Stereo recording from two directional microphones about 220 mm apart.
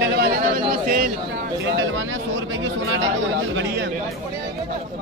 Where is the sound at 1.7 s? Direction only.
60° right (ahead or behind).